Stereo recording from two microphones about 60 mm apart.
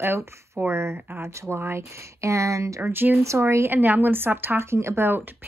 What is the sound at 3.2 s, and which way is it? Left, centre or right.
Speech, right.